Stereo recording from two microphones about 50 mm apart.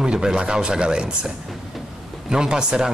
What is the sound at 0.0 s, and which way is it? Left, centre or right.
A man's voice, centre.